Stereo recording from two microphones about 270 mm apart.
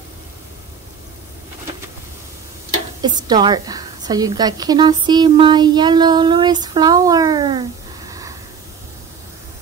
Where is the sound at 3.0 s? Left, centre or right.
Centre.